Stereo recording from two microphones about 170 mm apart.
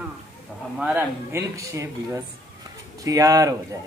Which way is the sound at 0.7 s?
10° right (ahead or behind).